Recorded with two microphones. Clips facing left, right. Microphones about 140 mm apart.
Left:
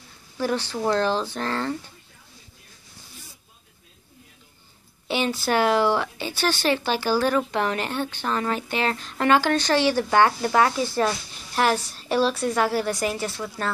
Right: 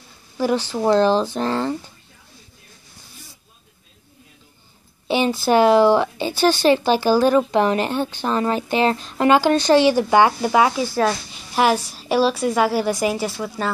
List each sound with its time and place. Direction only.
0.4 s speech: 10° right (ahead or behind)
0.7 s speech: 20° right (ahead or behind)
5.0 s speech: 15° right (ahead or behind)